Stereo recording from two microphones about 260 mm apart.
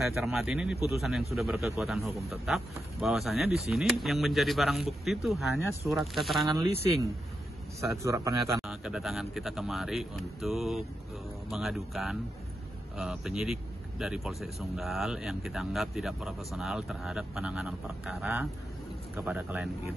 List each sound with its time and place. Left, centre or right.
0.1 s speech: centre
8.0 s a man's voice: centre